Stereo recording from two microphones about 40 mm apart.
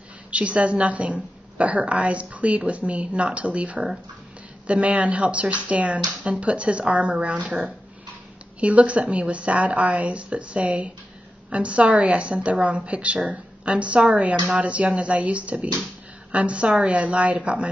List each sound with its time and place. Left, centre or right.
0.3 s a woman's voice: right
8.5 s a woman's voice: right